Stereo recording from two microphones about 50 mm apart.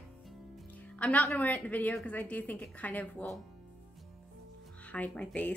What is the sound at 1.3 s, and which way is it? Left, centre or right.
A woman's voice, left.